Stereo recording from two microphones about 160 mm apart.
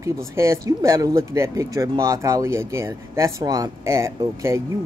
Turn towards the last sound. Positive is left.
turn(degrees=-15)  # may be behind; listen again after turning